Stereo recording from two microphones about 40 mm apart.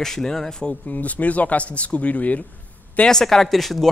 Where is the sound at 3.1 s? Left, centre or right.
Centre.